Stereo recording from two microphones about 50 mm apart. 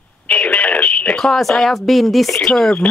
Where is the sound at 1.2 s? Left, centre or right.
Centre.